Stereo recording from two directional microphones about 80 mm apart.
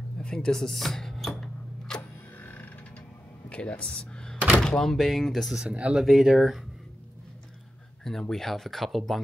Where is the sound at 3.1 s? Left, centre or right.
Left.